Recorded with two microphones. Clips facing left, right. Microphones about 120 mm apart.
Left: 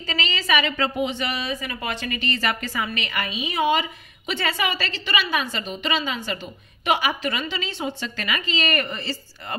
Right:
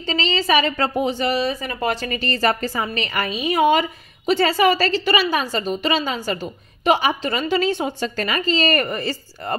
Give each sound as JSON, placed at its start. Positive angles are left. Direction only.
{"t": 0.0, "sound": "a woman's voice", "side_deg": -30}
{"t": 4.3, "sound": "a woman's voice", "side_deg": -35}
{"t": 7.4, "sound": "a woman's voice", "side_deg": -45}
{"t": 8.8, "sound": "speech", "side_deg": -50}